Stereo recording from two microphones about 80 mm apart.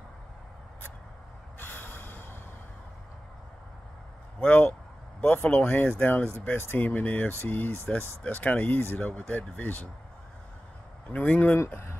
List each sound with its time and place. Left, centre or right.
1.6 s snort: left
4.4 s speech: left
11.1 s speech: centre
11.5 s speech: left